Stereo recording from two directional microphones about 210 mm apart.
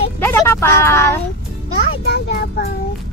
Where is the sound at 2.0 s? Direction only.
50° left (ahead or behind).